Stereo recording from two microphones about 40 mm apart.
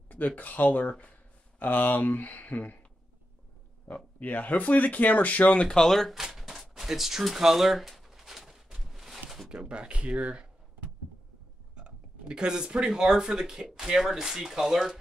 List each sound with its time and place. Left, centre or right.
0.4 s speech: left
3.9 s speech: left
5.7 s speech: centre
6.1 s a sound: centre
6.7 s speech: centre
7.2 s a sound: centre
9.5 s speech: right
11.7 s speech: right; by 15.0 s centre